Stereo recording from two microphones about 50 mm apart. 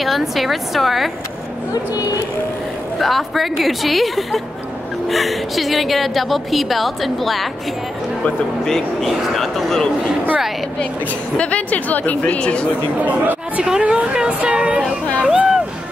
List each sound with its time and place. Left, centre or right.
0.0 s speech: centre
3.0 s speech: centre
8.6 s speech: centre
10.8 s a woman's voice: left
13.0 s speech: right
13.6 s speech: centre
14.1 s music: centre
15.2 s a sound: centre